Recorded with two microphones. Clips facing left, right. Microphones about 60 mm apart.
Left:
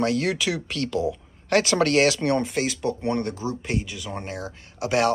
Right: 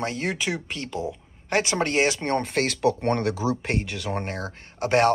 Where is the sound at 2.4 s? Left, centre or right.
Right.